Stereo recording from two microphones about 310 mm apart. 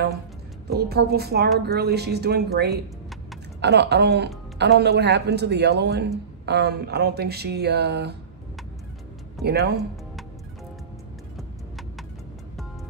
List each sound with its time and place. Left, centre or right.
0.7 s a woman's voice: right
9.4 s a woman's voice: right